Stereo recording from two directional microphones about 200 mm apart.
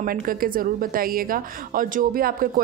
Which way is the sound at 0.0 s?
45° right (ahead or behind).